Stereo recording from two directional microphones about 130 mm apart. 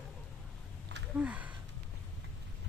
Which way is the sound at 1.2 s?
10° right (ahead or behind).